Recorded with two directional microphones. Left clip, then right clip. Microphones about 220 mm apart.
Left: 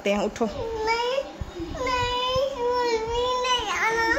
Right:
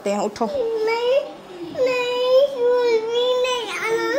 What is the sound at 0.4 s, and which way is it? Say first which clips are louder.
Speech: right 4 dB; 15° left (ahead or behind).